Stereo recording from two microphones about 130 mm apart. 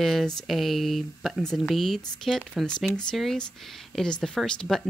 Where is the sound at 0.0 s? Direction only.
Centre (ahead or behind).